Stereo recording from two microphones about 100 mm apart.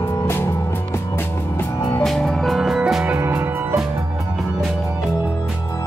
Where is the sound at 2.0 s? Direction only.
5° left (ahead or behind).